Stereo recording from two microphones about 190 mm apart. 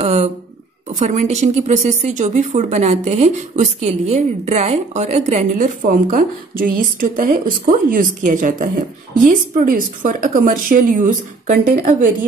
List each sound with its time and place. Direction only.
0.0 s speech: 35° right (ahead or behind)
5.8 s speech: 45° right (ahead or behind)